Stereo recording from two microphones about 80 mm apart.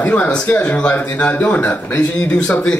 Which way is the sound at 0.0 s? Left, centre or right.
Centre.